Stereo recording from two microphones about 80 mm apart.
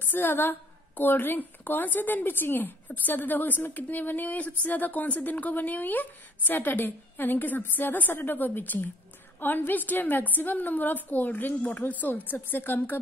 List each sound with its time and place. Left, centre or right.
0.1 s a woman's voice: left